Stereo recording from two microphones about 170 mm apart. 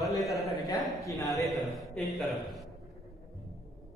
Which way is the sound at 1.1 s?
20° left (ahead or behind).